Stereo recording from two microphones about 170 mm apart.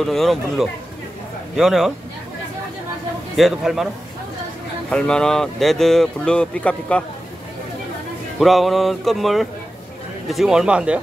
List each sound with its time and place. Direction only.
0.0 s speech: centre (ahead or behind)
3.3 s speech: centre (ahead or behind)
8.4 s speech: centre (ahead or behind)